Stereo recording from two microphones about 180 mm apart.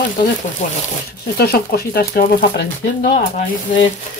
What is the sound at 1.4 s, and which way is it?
Speech, 60° left (ahead or behind).